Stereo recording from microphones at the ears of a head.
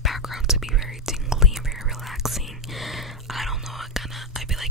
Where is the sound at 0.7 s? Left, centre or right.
Centre.